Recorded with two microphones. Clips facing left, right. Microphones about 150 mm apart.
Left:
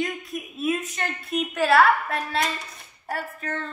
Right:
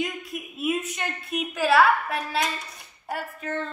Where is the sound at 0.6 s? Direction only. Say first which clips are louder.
Left 1 dB; 10° right (ahead or behind).